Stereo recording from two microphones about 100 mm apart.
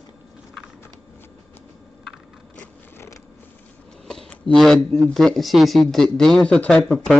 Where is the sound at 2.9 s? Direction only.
30° left (ahead or behind).